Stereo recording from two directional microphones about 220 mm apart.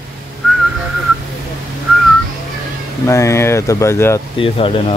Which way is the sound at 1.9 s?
5° right (ahead or behind).